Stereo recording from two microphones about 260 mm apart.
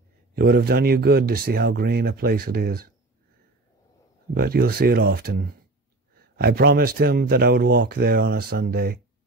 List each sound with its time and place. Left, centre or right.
0.3 s speech: right
4.3 s speech: right